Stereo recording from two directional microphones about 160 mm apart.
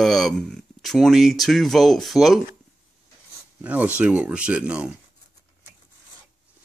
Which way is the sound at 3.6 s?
10° right (ahead or behind).